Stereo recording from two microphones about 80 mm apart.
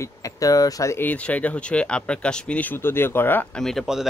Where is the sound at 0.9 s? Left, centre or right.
Centre.